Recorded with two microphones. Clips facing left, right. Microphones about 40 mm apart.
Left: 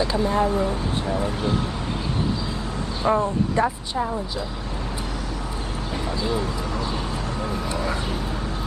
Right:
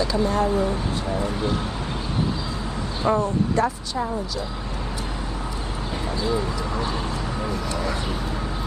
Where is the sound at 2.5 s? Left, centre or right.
Centre.